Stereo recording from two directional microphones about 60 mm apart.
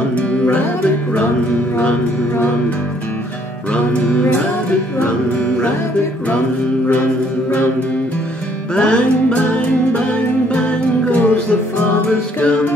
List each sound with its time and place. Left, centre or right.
8.7 s music: centre
10.5 s music: centre